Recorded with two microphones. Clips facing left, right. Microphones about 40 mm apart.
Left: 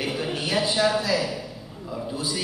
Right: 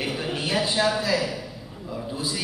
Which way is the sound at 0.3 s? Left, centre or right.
Right.